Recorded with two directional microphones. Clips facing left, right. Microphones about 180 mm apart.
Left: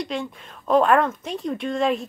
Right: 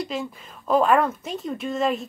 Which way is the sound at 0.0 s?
Centre (ahead or behind).